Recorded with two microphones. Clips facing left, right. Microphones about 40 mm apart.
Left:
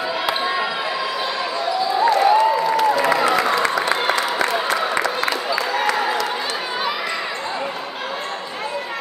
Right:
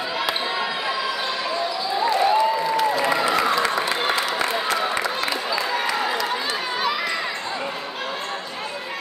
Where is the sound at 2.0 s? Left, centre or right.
Left.